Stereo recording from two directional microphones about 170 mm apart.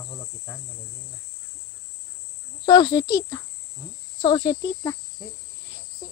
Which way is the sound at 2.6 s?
25° left (ahead or behind).